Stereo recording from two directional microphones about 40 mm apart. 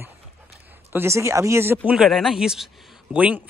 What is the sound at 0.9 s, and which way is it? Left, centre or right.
Speech, right.